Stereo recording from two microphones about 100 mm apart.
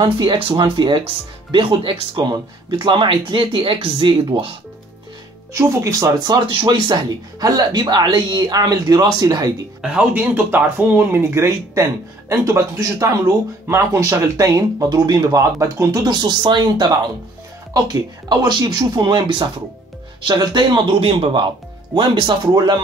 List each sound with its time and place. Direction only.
0.0 s speech: 55° right (ahead or behind)
5.5 s speech: 30° right (ahead or behind)
6.1 s speech: 45° right (ahead or behind)
7.3 s speech: 40° right (ahead or behind)
10.1 s speech: 20° right (ahead or behind); by 22.8 s 50° right (ahead or behind)